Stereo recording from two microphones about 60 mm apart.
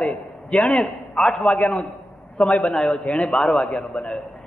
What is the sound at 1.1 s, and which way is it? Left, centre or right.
A man's voice, centre.